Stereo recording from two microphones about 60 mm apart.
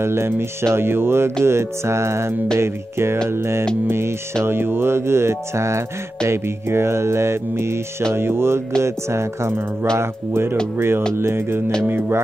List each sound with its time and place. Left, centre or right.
0.0 s speech: right